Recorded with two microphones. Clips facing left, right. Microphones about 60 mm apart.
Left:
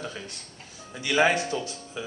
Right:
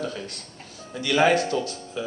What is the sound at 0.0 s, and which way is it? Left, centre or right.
A man's voice, left.